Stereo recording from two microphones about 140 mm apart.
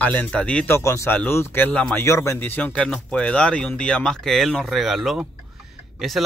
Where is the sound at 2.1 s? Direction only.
20° left (ahead or behind).